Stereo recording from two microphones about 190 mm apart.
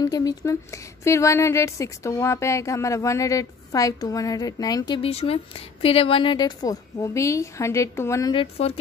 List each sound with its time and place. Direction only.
0.0 s speech: 20° left (ahead or behind)
8.4 s speech: 30° left (ahead or behind)